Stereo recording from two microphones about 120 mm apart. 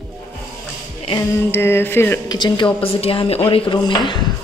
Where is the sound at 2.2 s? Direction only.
40° left (ahead or behind).